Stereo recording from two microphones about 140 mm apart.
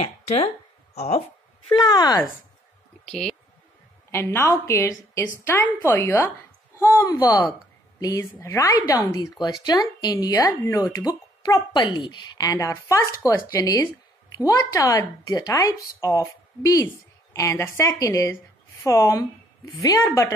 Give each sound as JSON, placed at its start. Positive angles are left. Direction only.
{"t": 0.0, "sound": "speech", "side_deg": 50}
{"t": 1.7, "sound": "speech", "side_deg": 35}
{"t": 3.1, "sound": "speech", "side_deg": 5}
{"t": 4.1, "sound": "a woman's voice", "side_deg": 20}